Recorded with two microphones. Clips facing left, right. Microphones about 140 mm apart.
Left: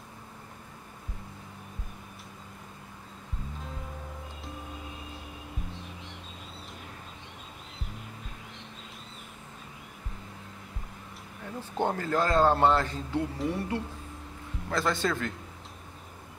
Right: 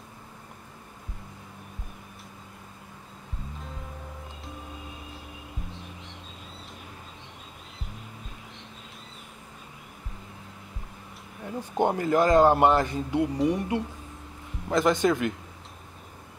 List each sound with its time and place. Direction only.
11.4 s a man's voice: 15° right (ahead or behind)